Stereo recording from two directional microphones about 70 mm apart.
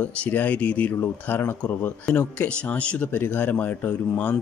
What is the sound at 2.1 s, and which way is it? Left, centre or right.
Speech, centre.